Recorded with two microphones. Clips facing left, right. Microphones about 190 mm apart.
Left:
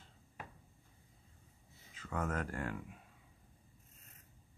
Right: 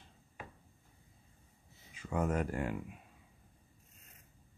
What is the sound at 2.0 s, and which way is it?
Speech, 15° right (ahead or behind).